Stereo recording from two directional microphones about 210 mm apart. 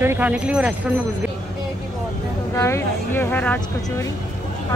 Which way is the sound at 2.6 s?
10° left (ahead or behind).